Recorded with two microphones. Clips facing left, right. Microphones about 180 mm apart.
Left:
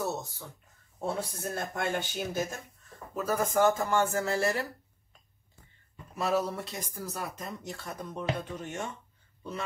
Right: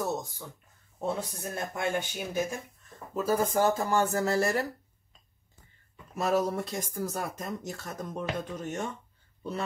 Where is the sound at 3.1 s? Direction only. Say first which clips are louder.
Right 1 dB; 30° right (ahead or behind).